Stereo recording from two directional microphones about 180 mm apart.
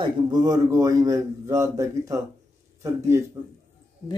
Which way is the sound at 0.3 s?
20° right (ahead or behind).